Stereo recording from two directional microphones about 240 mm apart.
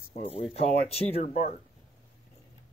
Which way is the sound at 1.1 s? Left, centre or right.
Left.